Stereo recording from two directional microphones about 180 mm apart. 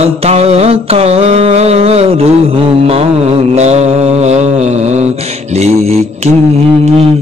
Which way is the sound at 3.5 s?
35° right (ahead or behind).